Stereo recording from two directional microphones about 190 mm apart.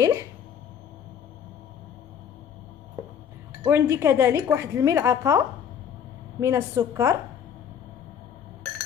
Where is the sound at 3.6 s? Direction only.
15° right (ahead or behind).